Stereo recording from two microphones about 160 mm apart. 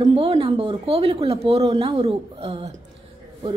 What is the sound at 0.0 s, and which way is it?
A woman's voice, 35° right (ahead or behind).